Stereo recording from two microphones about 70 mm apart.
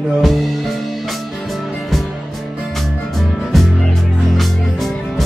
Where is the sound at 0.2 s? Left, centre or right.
Centre.